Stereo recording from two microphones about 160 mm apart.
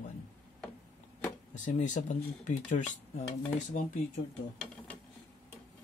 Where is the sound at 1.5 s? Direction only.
50° left (ahead or behind).